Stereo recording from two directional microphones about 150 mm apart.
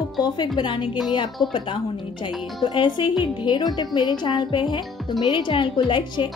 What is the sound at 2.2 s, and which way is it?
Speech, 30° left (ahead or behind).